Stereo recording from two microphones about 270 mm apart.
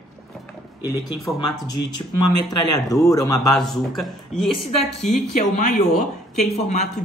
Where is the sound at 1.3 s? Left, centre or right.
Centre.